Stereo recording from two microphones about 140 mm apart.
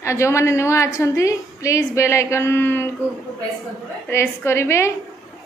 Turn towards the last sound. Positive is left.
turn(degrees=20)  # may be behind; listen again after turning